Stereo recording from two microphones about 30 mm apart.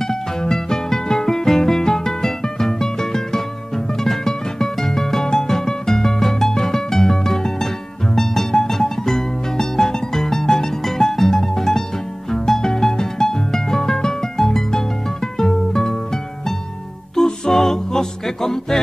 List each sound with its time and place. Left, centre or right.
0.0 s music: centre
17.1 s music: centre